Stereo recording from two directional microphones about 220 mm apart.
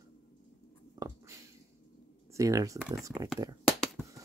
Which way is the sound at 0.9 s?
15° right (ahead or behind).